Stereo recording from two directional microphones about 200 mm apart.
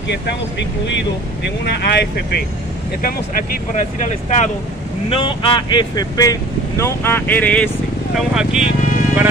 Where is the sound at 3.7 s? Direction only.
35° left (ahead or behind).